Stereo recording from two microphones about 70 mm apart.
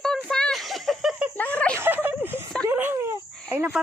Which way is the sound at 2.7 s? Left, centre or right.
Right.